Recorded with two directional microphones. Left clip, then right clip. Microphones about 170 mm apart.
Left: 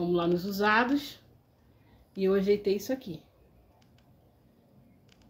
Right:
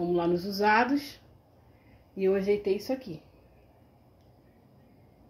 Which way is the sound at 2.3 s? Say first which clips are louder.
Left 2 dB; centre (ahead or behind).